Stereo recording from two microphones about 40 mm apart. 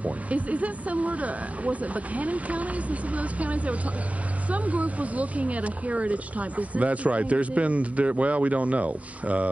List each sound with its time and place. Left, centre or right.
0.0 s speech: right